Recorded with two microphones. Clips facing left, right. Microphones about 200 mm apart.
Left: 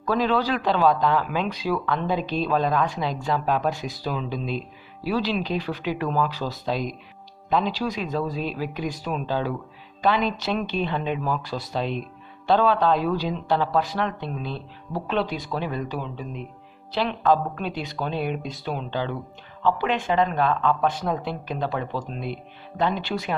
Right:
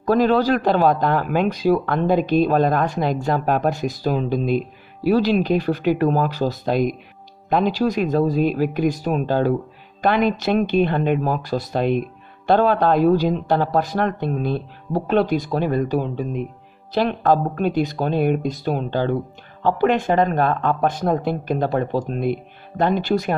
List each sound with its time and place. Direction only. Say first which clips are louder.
0.0 s speech: right 6 dB; 45° right (ahead or behind)